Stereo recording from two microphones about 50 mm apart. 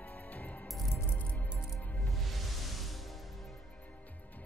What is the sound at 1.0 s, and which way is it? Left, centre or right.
Music, left.